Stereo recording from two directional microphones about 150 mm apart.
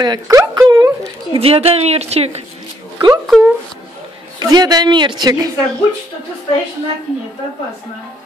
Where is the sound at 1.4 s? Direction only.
40° right (ahead or behind).